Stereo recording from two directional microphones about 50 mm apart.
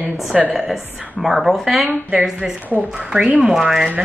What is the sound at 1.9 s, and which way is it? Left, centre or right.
Speech, right.